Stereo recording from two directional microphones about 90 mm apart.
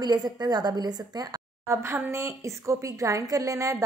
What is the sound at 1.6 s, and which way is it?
A woman's voice, 30° right (ahead or behind).